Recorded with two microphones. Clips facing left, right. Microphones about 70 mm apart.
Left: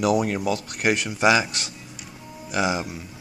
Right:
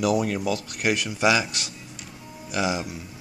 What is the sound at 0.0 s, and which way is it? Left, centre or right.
Speech, left.